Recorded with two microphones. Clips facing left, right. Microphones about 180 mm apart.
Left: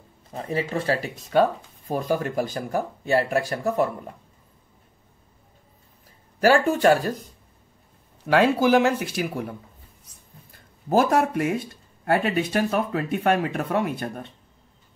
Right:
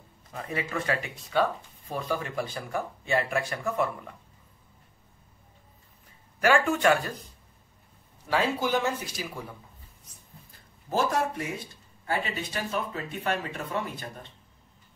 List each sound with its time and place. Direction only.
0.3 s speech: 30° left (ahead or behind)
1.3 s speech: 45° left (ahead or behind)
6.4 s speech: 35° left (ahead or behind)
8.3 s speech: 85° left; by 9.6 s 60° left (ahead or behind)
10.9 s speech: 60° left (ahead or behind)